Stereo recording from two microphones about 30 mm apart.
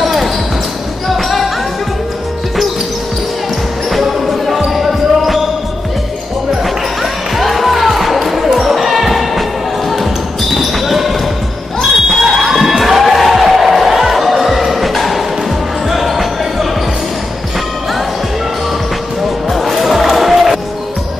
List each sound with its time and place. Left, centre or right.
0.0 s basketball bounce: centre
4.0 s basketball bounce: centre
6.6 s basketball bounce: centre
10.5 s basketball bounce: centre
12.2 s crowd: centre
13.0 s music: centre
15.9 s basketball bounce: centre
19.5 s music: centre